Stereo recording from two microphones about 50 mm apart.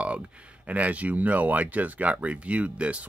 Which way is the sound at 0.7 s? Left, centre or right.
Right.